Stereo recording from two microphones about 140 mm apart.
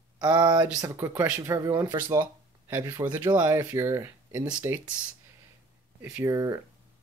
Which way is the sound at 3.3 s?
30° right (ahead or behind).